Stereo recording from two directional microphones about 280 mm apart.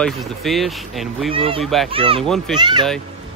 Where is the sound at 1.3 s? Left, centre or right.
Centre.